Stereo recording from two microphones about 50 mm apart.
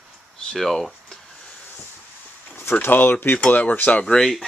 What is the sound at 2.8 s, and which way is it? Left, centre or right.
Speech, left.